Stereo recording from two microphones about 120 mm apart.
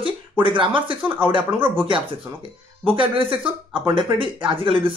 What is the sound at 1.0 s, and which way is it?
Speech, 10° right (ahead or behind).